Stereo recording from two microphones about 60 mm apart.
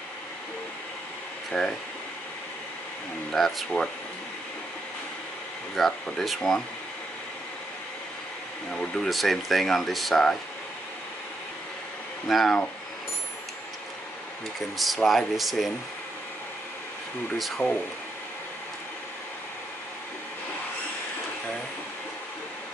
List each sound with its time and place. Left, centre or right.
1.5 s speech: centre
3.3 s speech: centre
5.8 s speech: centre
8.7 s speech: centre
9.1 s speech: centre
12.3 s speech: centre
15.0 s speech: centre
17.6 s speech: left